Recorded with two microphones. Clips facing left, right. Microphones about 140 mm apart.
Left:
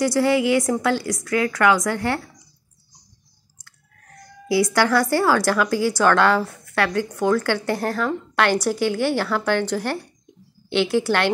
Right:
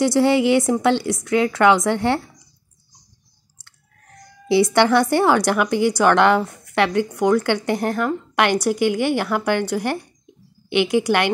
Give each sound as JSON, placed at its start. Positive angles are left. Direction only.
{"t": 0.0, "sound": "speech", "side_deg": -25}
{"t": 4.5, "sound": "a woman's voice", "side_deg": -25}